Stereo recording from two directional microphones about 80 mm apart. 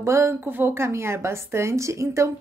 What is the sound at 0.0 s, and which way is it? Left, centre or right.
A woman's voice, right.